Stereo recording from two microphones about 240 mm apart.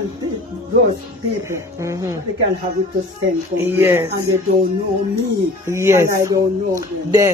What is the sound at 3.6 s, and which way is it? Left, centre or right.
Speech, centre.